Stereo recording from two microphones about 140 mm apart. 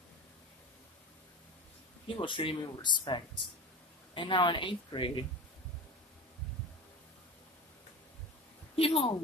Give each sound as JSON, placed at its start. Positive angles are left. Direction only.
{"t": 2.0, "sound": "speech", "side_deg": 35}
{"t": 8.7, "sound": "speech", "side_deg": 40}